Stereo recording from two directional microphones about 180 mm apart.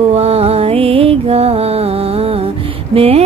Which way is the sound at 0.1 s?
35° right (ahead or behind).